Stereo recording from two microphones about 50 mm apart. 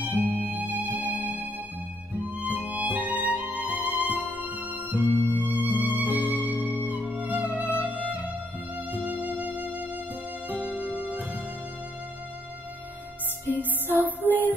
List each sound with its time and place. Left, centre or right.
0.0 s music: right
13.5 s music: right